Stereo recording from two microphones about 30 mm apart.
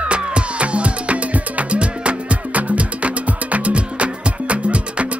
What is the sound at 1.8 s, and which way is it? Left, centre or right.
Music, right.